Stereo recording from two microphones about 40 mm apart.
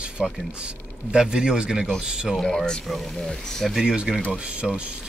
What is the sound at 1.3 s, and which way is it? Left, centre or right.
Speech, right.